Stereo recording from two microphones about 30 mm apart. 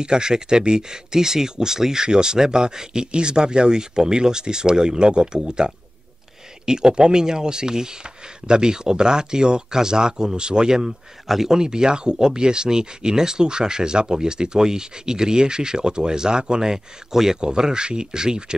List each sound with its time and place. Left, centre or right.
0.0 s speech: right
6.6 s speech: right
11.2 s speech: centre
11.5 s speech: right